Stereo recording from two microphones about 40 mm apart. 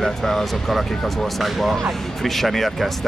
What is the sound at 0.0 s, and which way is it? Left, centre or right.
Speech, centre.